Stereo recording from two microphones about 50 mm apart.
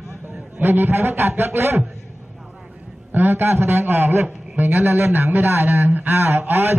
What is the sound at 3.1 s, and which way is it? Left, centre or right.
A man's voice, right.